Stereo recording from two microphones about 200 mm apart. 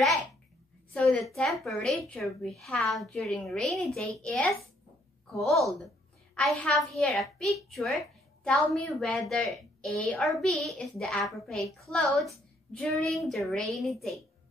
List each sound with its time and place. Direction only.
1.3 s a woman's voice: centre (ahead or behind)